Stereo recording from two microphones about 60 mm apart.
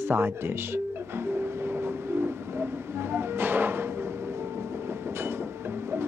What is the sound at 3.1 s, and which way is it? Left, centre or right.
Music, right.